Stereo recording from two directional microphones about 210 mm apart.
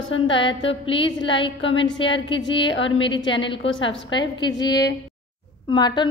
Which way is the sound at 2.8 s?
25° left (ahead or behind).